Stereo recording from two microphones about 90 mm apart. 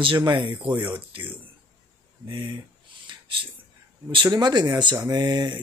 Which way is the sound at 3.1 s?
70° right (ahead or behind).